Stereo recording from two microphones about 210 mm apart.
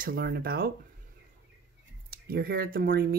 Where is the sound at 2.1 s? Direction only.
45° right (ahead or behind).